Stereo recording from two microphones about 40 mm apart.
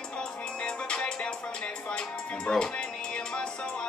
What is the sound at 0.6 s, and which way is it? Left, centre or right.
Music, left.